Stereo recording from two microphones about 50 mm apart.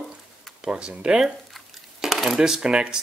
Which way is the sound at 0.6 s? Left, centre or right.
Centre.